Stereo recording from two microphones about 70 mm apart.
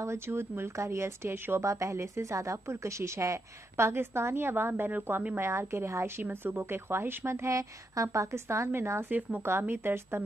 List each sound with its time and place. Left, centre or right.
0.0 s a woman's voice: right
1.6 s a woman's voice: right
9.1 s a woman's voice: right